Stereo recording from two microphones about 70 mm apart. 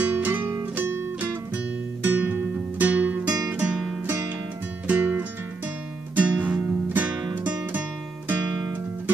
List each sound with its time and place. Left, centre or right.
0.0 s music: right
2.0 s music: right